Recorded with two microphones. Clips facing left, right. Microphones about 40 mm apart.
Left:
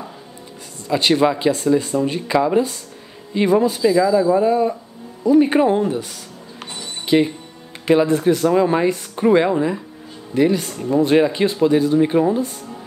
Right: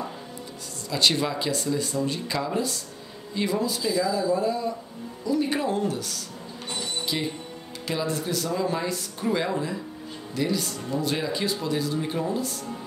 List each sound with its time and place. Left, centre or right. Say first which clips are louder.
0.8 s speech: left 8 dB; left
7.1 s speech: left 13 dB; left